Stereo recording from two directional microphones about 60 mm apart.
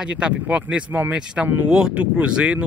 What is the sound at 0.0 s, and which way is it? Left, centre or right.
Speech, centre.